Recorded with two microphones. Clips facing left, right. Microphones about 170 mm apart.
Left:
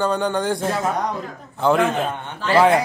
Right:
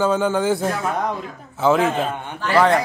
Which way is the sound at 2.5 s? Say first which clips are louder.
Left 1 dB; 10° left (ahead or behind).